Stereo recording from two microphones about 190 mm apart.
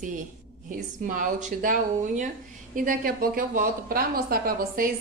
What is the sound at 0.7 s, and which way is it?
A woman's voice, 45° right (ahead or behind).